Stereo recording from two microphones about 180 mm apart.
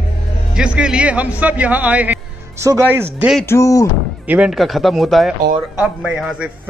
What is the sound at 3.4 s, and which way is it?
Speech, 15° left (ahead or behind).